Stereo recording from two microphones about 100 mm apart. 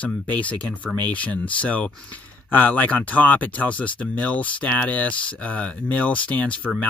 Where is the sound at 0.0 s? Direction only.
15° left (ahead or behind).